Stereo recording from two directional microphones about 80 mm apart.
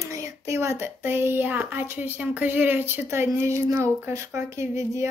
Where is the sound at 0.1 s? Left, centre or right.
Right.